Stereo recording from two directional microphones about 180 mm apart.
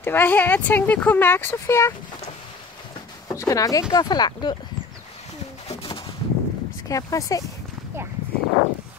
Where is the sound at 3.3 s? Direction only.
20° left (ahead or behind).